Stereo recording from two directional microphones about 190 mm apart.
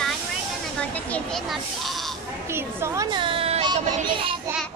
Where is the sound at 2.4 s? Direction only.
15° right (ahead or behind); by 3.8 s 35° right (ahead or behind).